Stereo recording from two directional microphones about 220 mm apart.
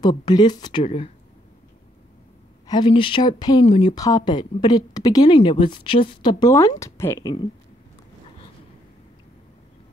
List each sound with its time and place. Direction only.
0.0 s speech: 20° left (ahead or behind)
2.6 s speech: 20° left (ahead or behind)